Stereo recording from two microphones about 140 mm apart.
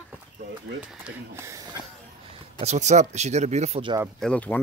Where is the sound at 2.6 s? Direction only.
55° right (ahead or behind).